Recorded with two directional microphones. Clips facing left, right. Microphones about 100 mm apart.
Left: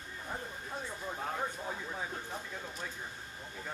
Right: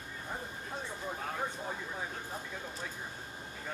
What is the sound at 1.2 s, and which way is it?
Speech, centre (ahead or behind).